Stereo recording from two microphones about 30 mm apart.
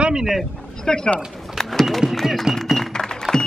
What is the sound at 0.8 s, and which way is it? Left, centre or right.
Speech, left.